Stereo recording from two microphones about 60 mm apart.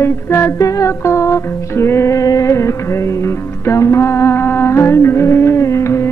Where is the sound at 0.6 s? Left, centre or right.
Left.